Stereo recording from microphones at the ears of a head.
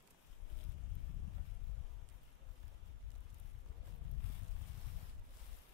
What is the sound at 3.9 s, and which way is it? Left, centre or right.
Boat, left.